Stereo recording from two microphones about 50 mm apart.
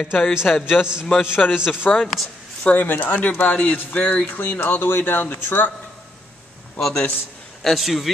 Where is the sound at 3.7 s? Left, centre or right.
Left.